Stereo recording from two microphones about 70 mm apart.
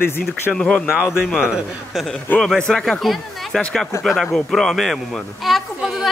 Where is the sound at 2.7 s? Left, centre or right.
Centre.